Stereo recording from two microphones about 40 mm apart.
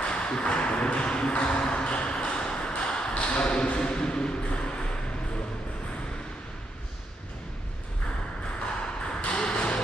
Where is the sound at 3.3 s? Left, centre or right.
Left.